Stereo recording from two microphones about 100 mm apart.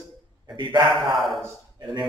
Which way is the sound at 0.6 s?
45° right (ahead or behind).